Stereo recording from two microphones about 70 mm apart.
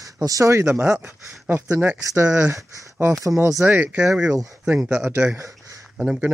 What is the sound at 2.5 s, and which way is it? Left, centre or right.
Speech, right.